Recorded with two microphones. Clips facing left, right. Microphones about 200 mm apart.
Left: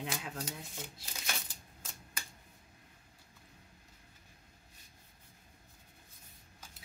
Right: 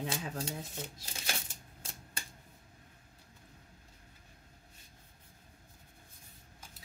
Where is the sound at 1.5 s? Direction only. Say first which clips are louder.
Right 2 dB; 25° right (ahead or behind).